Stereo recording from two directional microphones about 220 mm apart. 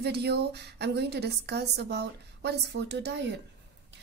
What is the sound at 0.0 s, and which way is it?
A woman's voice, 50° right (ahead or behind).